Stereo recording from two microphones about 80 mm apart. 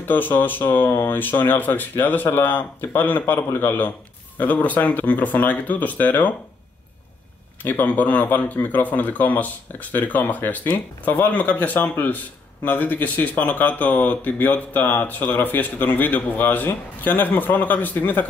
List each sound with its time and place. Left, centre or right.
0.1 s speech: left
7.6 s speech: left